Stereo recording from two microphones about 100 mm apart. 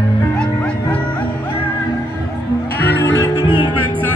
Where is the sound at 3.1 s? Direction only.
35° left (ahead or behind).